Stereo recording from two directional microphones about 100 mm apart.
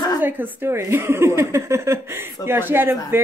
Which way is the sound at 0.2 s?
20° right (ahead or behind).